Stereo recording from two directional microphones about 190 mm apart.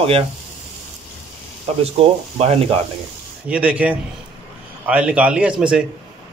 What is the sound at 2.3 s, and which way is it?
Speech, 30° right (ahead or behind).